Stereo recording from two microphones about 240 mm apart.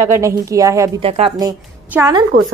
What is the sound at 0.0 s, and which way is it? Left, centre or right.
Speech, centre.